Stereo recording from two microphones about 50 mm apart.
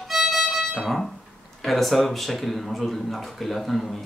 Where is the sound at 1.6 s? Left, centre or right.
Centre.